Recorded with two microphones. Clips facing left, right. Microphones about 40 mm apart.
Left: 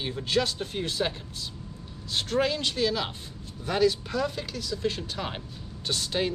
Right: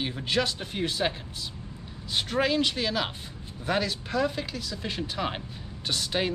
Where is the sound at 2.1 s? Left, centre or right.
Centre.